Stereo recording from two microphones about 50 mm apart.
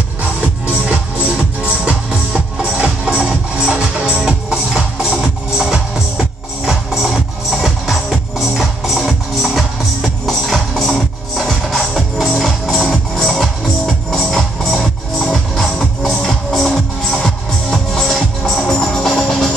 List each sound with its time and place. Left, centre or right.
0.4 s music: right; by 19.5 s centre